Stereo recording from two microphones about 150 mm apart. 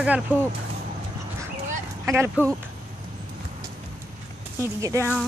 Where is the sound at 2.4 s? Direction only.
10° right (ahead or behind).